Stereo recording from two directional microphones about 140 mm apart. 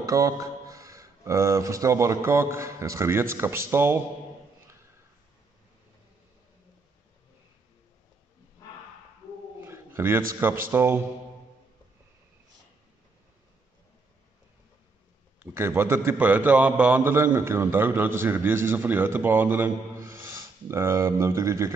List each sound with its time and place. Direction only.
0.0 s speech: 25° right (ahead or behind)
9.6 s dog: 15° right (ahead or behind)
10.7 s a man's voice: 15° right (ahead or behind)
15.3 s a man's voice: 15° right (ahead or behind)